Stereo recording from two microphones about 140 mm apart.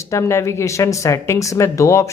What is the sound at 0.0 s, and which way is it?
A woman's voice, 20° left (ahead or behind).